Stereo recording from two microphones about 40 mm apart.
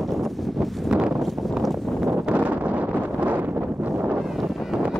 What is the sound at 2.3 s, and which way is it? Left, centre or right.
Wind noise, right.